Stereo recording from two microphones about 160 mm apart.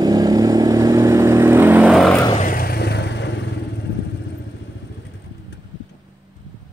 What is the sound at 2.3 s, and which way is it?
Vehicle, 60° left (ahead or behind).